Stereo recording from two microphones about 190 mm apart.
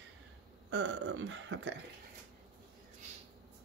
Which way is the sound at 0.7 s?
70° right (ahead or behind).